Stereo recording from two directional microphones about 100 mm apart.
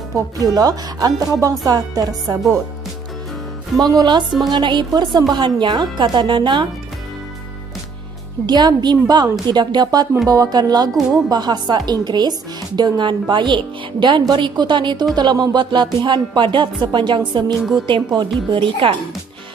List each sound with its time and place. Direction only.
0.4 s speech: 40° right (ahead or behind)
3.8 s speech: 45° right (ahead or behind)
8.5 s speech: 45° right (ahead or behind)
17.6 s a woman's voice: centre (ahead or behind)
17.8 s speech: 50° right (ahead or behind)